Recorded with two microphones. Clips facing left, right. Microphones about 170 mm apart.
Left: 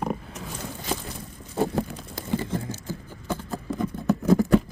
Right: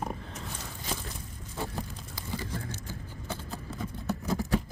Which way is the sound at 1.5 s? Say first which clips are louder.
Left 11 dB; 65° left (ahead or behind).